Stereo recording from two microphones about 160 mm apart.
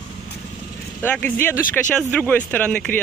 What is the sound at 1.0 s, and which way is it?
Speech, 10° left (ahead or behind).